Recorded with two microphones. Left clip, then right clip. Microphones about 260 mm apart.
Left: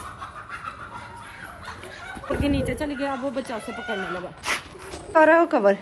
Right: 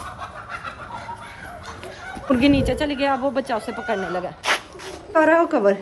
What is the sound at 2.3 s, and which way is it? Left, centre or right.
Speech, right.